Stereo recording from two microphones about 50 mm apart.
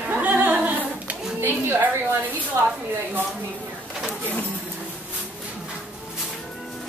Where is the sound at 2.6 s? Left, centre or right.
Right.